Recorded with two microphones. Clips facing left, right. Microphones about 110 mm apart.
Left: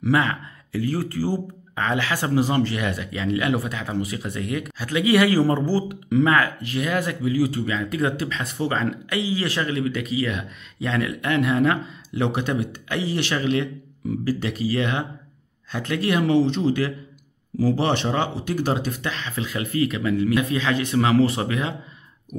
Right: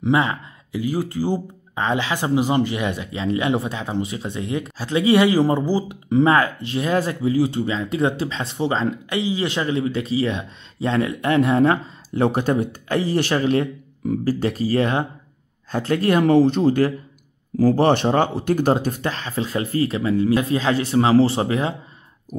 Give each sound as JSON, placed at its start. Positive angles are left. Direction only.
{"t": 0.0, "sound": "speech", "side_deg": -25}
{"t": 6.0, "sound": "speech", "side_deg": -30}